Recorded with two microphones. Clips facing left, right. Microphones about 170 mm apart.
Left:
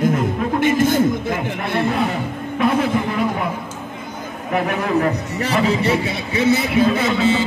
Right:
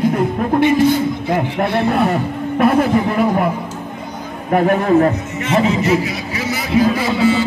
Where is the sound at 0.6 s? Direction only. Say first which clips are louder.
Right 3 dB; 50° left (ahead or behind).